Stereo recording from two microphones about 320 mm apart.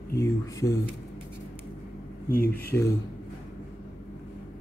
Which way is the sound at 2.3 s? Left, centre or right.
Left.